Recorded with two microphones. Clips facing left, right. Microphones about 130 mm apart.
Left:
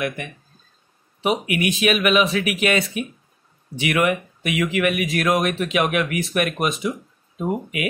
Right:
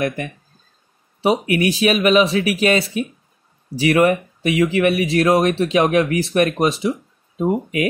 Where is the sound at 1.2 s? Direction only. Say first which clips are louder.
Right 4 dB; 35° right (ahead or behind).